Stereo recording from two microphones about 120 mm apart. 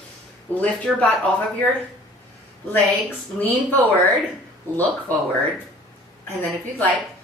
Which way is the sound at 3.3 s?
15° left (ahead or behind).